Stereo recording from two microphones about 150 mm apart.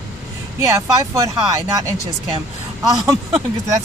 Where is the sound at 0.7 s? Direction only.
20° right (ahead or behind).